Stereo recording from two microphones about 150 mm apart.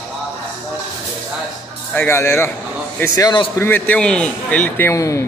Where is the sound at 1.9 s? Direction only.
15° left (ahead or behind).